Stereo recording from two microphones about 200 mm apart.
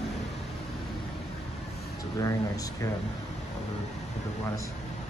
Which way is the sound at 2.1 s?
15° left (ahead or behind).